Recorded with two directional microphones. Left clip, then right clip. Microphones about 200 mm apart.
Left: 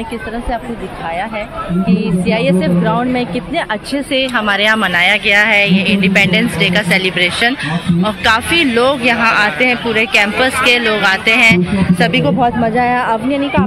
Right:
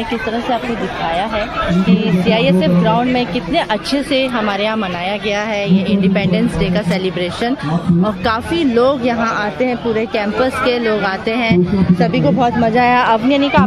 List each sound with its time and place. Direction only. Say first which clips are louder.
1.9 s a woman's voice: left 2 dB; 10° right (ahead or behind)
12.8 s speech: right 2 dB; 25° right (ahead or behind)